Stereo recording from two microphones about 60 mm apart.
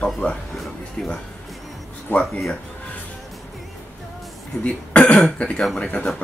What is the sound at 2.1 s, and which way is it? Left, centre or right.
Speech, left.